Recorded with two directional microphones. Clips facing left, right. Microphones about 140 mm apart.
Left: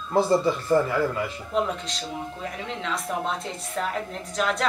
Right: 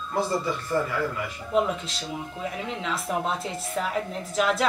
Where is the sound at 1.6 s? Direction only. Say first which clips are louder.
Right 2 dB; 5° right (ahead or behind).